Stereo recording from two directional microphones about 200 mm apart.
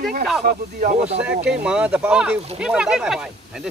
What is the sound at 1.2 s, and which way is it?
Speech, 5° right (ahead or behind).